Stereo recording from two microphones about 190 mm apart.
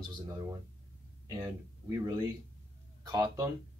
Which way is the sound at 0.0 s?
20° right (ahead or behind).